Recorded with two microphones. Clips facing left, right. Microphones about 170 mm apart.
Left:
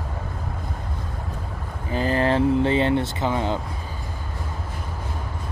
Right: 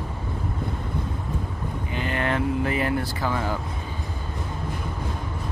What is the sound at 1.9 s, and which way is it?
Vehicle, 35° left (ahead or behind).